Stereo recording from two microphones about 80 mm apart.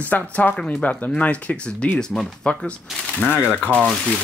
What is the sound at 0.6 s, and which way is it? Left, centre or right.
Speech, centre.